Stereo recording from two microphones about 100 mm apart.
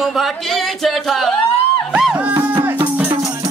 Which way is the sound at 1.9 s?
10° right (ahead or behind).